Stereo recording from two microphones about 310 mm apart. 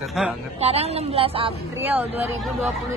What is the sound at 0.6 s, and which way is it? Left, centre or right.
Speech, centre.